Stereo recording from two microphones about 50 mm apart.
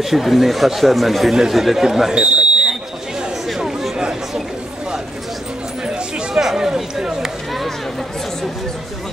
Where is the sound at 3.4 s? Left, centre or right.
Centre.